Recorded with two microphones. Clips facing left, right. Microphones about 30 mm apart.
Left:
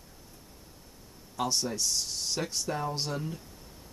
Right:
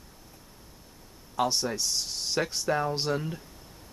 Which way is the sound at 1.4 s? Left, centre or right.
Centre.